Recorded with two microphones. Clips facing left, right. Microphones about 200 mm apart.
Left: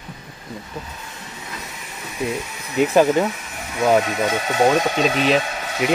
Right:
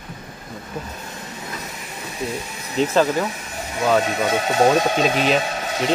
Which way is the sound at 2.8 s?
15° left (ahead or behind).